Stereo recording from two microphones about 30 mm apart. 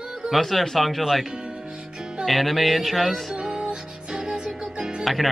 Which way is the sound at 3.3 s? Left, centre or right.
Right.